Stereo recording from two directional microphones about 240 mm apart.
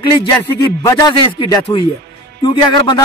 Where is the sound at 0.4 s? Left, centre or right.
Centre.